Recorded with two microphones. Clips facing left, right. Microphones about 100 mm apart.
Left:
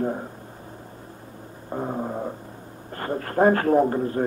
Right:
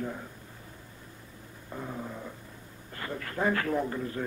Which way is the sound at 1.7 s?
45° left (ahead or behind).